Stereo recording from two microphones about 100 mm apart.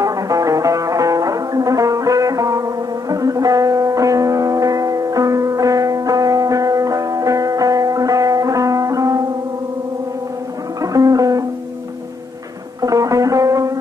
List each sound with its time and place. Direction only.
0.0 s music: 35° right (ahead or behind)
10.8 s music: 35° right (ahead or behind)
12.8 s music: 35° right (ahead or behind)